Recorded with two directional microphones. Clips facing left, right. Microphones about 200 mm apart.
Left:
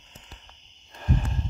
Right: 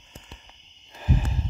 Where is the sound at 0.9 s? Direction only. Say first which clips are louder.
Right 1 dB; 5° right (ahead or behind).